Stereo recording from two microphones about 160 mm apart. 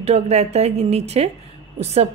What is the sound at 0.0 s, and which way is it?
A woman's voice, 40° right (ahead or behind).